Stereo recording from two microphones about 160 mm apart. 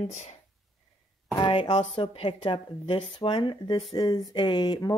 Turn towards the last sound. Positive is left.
turn(degrees=25)  # may be behind; listen again after turning